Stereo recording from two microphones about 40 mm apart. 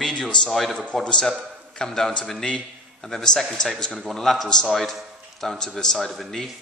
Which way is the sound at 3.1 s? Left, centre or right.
Centre.